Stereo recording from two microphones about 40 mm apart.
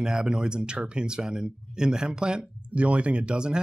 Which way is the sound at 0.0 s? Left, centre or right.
Right.